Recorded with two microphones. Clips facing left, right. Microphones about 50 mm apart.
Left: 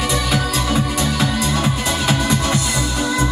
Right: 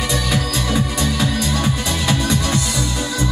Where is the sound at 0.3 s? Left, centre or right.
Centre.